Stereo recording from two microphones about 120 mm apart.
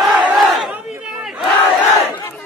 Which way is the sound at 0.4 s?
Centre (ahead or behind).